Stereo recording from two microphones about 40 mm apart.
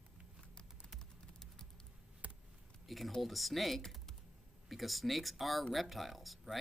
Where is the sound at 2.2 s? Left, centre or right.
Right.